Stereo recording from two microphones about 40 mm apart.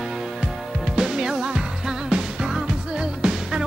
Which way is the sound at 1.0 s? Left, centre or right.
Centre.